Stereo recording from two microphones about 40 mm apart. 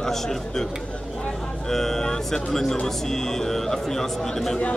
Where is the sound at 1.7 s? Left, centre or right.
Centre.